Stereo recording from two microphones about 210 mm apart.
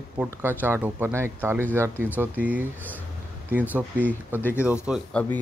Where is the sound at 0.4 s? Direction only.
10° right (ahead or behind).